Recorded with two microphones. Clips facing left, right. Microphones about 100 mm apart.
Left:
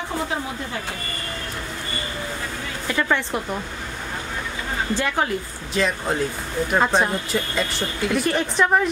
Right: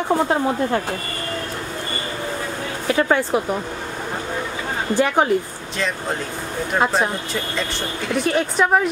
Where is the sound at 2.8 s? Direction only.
35° right (ahead or behind).